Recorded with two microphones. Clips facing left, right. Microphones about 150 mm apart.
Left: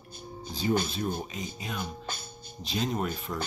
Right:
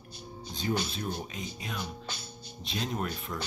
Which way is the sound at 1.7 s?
50° left (ahead or behind).